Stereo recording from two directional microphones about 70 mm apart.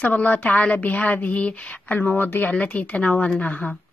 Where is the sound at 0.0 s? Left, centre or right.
Left.